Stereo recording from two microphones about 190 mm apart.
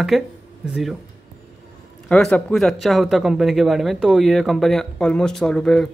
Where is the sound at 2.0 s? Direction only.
5° left (ahead or behind).